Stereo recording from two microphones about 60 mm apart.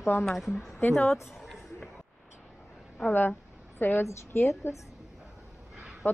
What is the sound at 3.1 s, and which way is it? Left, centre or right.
A woman's voice, left.